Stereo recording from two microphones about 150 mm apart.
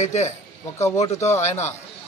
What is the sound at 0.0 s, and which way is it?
Speech, 50° left (ahead or behind).